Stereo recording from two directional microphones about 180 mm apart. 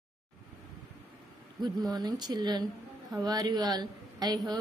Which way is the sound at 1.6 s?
20° right (ahead or behind).